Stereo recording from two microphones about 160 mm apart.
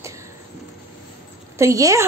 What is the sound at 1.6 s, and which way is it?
Speech, 20° right (ahead or behind).